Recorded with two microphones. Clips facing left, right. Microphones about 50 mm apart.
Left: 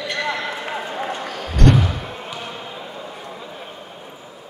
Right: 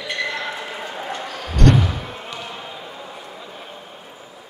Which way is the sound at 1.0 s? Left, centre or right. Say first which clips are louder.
Left 3 dB; left.